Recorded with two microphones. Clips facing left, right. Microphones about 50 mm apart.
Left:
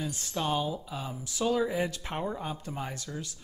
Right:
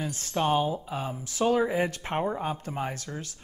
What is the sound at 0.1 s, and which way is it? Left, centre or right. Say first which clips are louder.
Speech: right 9 dB; right.